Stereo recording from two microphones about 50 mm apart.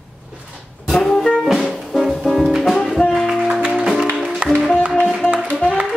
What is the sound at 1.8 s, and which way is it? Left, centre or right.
Music, centre.